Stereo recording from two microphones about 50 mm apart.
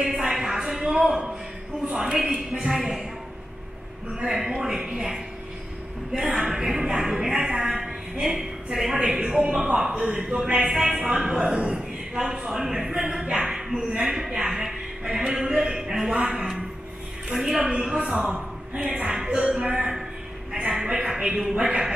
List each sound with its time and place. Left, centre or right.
0.0 s a sound: centre
2.0 s speech: centre
2.7 s a woman's voice: centre
4.1 s a woman's voice: centre
6.4 s a woman's voice: centre